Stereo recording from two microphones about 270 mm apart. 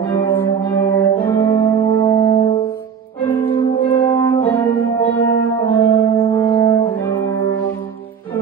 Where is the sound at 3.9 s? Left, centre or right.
Centre.